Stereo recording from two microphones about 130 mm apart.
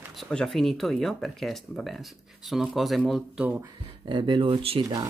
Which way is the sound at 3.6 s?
35° right (ahead or behind).